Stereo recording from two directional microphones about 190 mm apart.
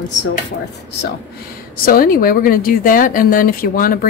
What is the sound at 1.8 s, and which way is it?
A woman's voice, 50° left (ahead or behind).